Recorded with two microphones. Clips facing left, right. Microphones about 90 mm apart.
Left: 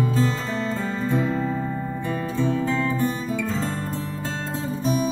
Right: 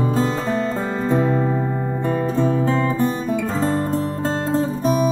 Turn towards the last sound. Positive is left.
turn(degrees=-40)  # may be behind; listen again after turning